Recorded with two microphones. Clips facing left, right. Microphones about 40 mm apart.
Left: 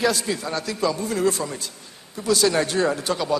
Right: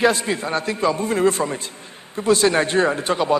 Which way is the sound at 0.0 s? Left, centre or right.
Right.